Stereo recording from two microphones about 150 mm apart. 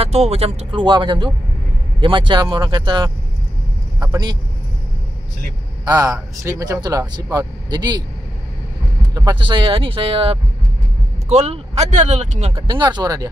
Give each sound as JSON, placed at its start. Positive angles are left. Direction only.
{"t": 0.0, "sound": "speech", "side_deg": -40}
{"t": 5.9, "sound": "speech", "side_deg": -25}
{"t": 9.1, "sound": "speech", "side_deg": -30}
{"t": 12.6, "sound": "speech", "side_deg": -30}